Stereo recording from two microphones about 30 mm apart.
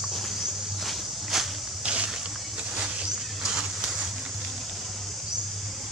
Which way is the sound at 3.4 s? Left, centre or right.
Centre.